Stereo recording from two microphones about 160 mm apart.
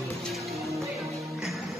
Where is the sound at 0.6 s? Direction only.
20° right (ahead or behind).